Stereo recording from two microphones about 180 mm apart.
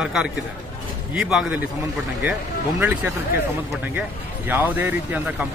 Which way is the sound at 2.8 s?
10° right (ahead or behind).